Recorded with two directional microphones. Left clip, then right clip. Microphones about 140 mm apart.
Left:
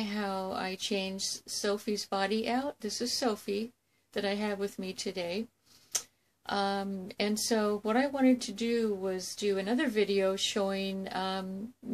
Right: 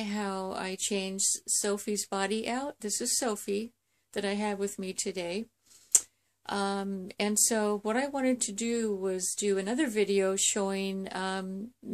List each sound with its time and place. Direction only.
0.0 s speech: 45° right (ahead or behind)